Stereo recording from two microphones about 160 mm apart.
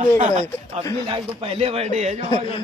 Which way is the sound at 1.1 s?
35° right (ahead or behind).